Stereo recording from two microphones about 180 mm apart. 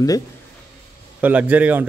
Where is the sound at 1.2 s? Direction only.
10° right (ahead or behind).